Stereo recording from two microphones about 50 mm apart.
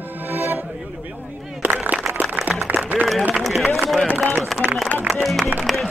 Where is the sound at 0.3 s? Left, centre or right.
Right.